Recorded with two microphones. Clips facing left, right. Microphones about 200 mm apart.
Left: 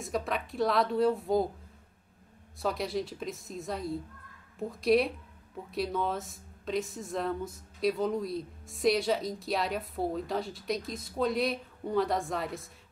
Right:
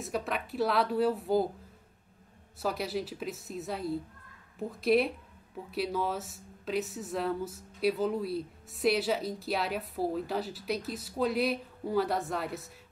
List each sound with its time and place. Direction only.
0.0 s speech: 5° right (ahead or behind)
2.6 s speech: 5° right (ahead or behind)